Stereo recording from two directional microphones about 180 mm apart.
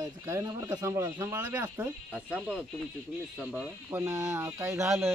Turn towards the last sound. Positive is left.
turn(degrees=0)  # may be behind; listen again after turning